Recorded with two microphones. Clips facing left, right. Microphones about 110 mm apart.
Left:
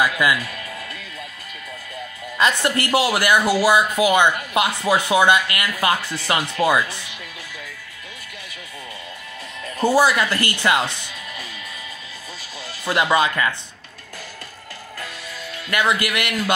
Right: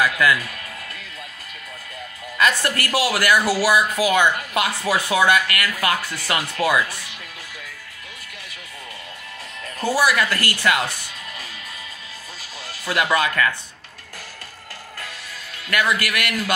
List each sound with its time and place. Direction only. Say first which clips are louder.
0.0 s a man's voice: even; 15° left (ahead or behind)
2.3 s speech: left 1 dB; 20° left (ahead or behind)
9.8 s speech: left 3 dB; 25° left (ahead or behind)
12.8 s speech: left 2 dB; 20° left (ahead or behind)
15.7 s speech: left 1 dB; 20° left (ahead or behind)